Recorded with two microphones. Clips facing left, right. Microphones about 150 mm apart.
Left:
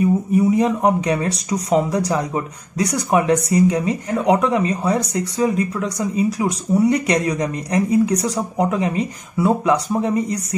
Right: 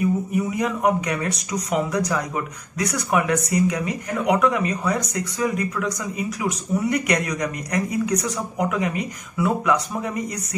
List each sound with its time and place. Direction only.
0.0 s speech: 30° left (ahead or behind)